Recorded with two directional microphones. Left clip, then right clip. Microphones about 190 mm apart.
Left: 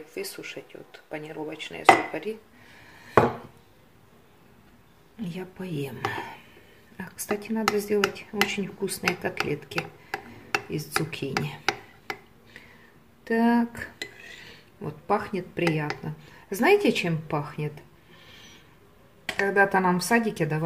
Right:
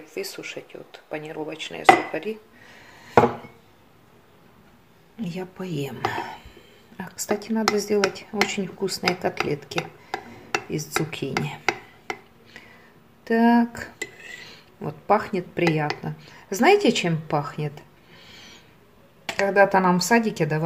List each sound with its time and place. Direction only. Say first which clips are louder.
0.1 s speech: right 4 dB; 10° right (ahead or behind)
5.2 s speech: right 4 dB; 15° right (ahead or behind)
13.2 s speech: right 4 dB; 15° right (ahead or behind)
19.3 s speech: right 4 dB; 15° right (ahead or behind)